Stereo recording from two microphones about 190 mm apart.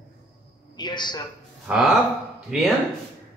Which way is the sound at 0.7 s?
25° left (ahead or behind).